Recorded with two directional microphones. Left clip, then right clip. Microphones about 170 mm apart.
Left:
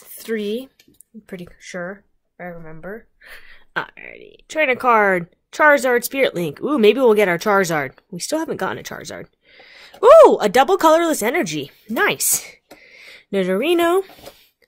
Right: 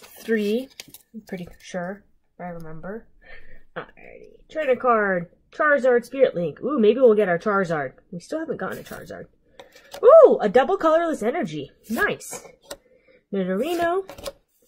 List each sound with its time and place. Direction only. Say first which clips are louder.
0.2 s speech: right 1 dB; 10° right (ahead or behind)
3.7 s a sound: left 10 dB; 30° left (ahead or behind)
4.5 s speech: left 4 dB; 25° left (ahead or behind)
13.3 s speech: left 7 dB; 25° left (ahead or behind)